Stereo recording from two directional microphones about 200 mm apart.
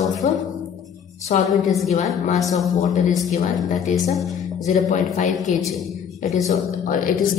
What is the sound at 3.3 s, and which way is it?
A woman's voice, 40° left (ahead or behind).